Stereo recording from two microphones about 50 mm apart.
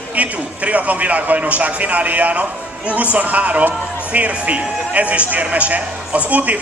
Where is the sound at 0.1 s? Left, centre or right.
Right.